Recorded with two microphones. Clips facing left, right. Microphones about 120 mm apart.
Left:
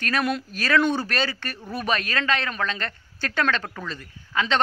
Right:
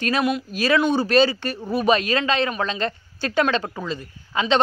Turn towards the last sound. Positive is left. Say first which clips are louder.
# right 4 dB
turn(degrees=-15)  # may be behind; listen again after turning